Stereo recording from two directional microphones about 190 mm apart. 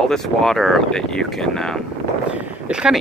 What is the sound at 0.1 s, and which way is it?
Speech, centre (ahead or behind).